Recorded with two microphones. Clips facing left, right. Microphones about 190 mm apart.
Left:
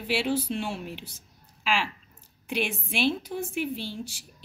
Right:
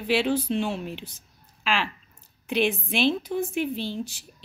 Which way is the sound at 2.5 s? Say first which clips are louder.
Right 5 dB; 10° left (ahead or behind).